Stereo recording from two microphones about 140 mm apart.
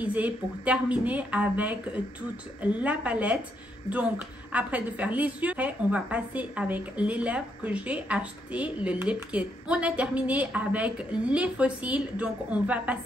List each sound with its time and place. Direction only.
0.0 s a woman's voice: 10° right (ahead or behind)